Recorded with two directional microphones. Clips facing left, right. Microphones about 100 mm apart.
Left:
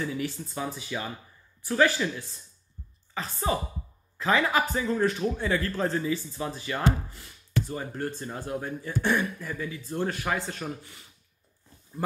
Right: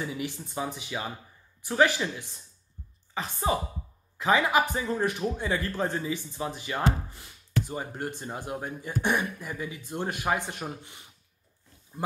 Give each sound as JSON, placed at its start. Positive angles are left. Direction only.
{"t": 0.0, "sound": "a man's voice", "side_deg": -15}